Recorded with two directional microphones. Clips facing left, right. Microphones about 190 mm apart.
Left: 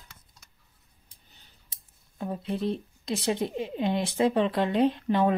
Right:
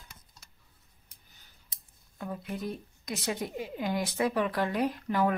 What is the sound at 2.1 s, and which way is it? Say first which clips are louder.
Speech: left 5 dB; 25° left (ahead or behind).